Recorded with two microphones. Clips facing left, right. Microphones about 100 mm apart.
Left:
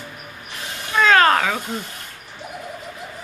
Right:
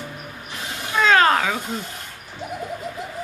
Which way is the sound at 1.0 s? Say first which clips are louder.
Left 1 dB; 15° right (ahead or behind).